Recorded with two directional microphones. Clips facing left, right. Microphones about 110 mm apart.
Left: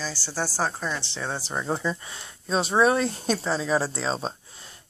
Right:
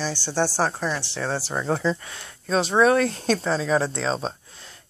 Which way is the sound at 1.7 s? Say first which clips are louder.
Right 5 dB; 10° left (ahead or behind).